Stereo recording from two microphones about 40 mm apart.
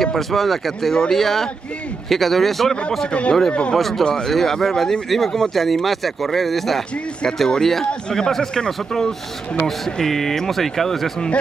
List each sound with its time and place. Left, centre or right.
0.0 s speech: centre
3.1 s speech: left
4.0 s speech: centre